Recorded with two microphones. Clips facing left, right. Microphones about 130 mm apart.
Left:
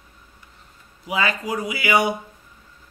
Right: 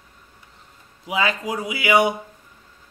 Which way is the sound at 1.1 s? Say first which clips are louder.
Right 1 dB; 20° right (ahead or behind).